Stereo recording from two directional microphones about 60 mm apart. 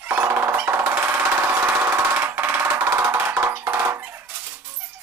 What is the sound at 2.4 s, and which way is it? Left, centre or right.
Music, right.